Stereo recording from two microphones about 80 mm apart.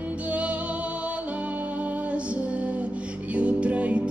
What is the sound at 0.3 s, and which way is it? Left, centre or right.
Music, centre.